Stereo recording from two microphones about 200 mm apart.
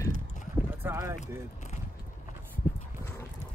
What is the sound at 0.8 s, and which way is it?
Speech, 10° right (ahead or behind).